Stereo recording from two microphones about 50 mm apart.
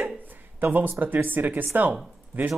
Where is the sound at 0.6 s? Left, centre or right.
Right.